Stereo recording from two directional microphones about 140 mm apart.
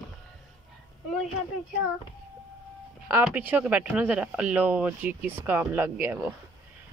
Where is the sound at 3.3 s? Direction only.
10° right (ahead or behind).